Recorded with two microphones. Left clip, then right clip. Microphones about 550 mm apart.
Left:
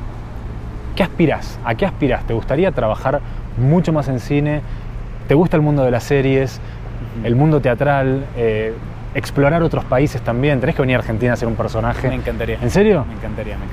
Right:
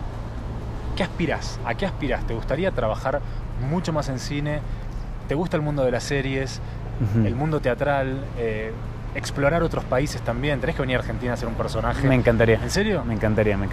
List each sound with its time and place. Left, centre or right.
0.9 s speech: left
12.1 s speech: right
12.6 s speech: left
13.2 s speech: right